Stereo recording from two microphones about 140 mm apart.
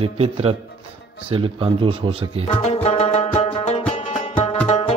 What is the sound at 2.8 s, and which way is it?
Music, 45° left (ahead or behind).